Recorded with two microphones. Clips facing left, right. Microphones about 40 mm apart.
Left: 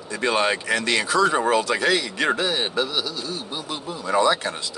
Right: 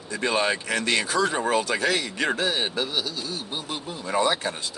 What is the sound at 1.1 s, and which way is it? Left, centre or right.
Speech, left.